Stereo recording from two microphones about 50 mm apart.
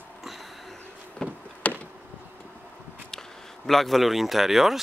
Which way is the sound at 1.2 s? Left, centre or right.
Left.